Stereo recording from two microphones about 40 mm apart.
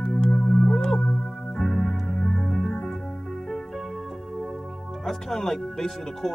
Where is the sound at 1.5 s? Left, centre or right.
Centre.